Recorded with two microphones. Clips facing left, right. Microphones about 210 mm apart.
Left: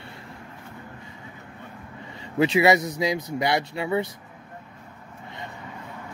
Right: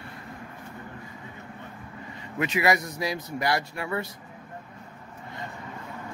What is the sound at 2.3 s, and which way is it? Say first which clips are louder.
Speech: left 6 dB; 30° left (ahead or behind).